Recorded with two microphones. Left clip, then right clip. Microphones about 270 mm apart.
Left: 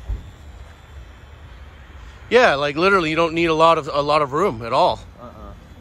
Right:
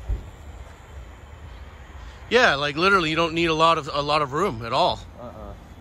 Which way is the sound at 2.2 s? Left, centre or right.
Centre.